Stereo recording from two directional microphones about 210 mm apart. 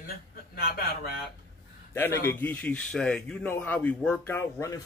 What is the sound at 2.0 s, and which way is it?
A man's voice, 10° left (ahead or behind).